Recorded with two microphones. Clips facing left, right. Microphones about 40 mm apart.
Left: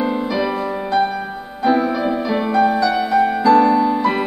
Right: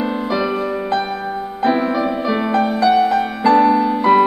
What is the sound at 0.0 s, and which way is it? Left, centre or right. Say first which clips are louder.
Music: even; centre.